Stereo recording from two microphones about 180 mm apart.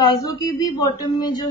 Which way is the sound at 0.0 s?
20° left (ahead or behind).